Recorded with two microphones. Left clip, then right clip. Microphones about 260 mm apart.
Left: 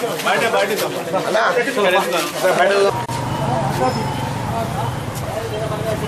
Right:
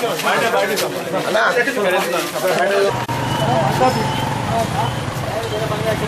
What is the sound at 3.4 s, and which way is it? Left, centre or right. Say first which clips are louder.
Vehicle: right 4 dB; centre.